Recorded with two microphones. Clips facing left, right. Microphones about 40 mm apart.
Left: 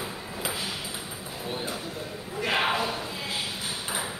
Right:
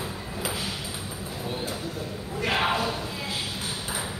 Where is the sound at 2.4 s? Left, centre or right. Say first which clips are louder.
Right 1 dB; centre.